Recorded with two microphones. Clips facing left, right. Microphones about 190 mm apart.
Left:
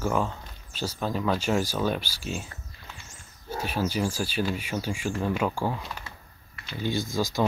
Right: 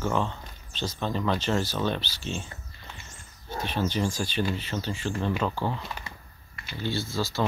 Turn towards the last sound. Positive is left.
turn(degrees=15)  # may be behind; listen again after turning